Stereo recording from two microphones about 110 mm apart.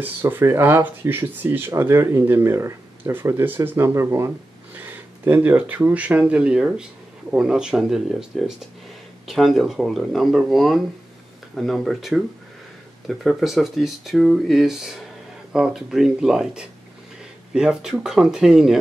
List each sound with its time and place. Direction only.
0.0 s speech: 20° right (ahead or behind)